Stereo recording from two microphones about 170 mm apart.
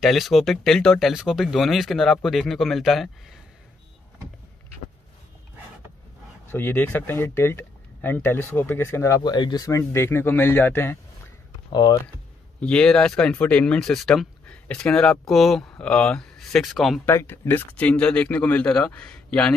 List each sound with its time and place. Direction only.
0.0 s speech: centre (ahead or behind)
6.5 s speech: 10° left (ahead or behind)
11.7 s speech: 25° left (ahead or behind)
12.5 s speech: 5° left (ahead or behind)
17.0 s speech: 15° left (ahead or behind)